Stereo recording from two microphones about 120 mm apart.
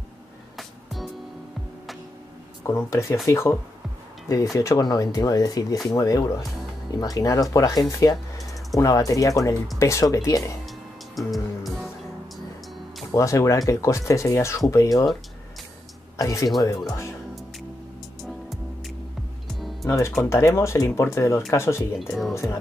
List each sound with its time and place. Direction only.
0.6 s music: centre (ahead or behind)
2.6 s speech: 25° left (ahead or behind)
4.6 s speech: 30° left (ahead or behind)
11.1 s music: centre (ahead or behind)
13.1 s speech: 25° left (ahead or behind)
16.2 s speech: 25° left (ahead or behind)
19.9 s speech: 25° left (ahead or behind)
22.0 s speech: centre (ahead or behind)
22.3 s speech: 25° left (ahead or behind)